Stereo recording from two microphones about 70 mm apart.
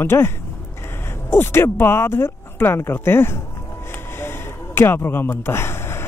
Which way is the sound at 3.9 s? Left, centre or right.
Left.